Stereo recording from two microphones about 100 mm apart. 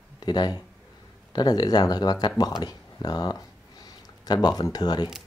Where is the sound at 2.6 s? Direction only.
40° left (ahead or behind).